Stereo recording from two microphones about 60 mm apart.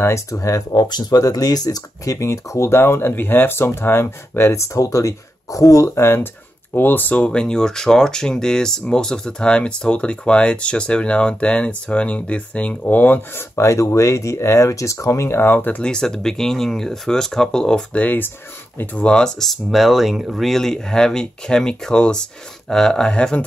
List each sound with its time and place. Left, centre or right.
0.0 s speech: left
1.1 s speech: left
2.1 s speech: left
4.7 s speech: left
5.9 s speech: left
7.2 s speech: centre; by 15.8 s left
15.8 s speech: centre
18.0 s speech: left
18.9 s speech: centre